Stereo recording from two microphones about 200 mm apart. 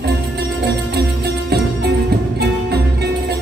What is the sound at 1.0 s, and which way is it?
Music, 55° right (ahead or behind).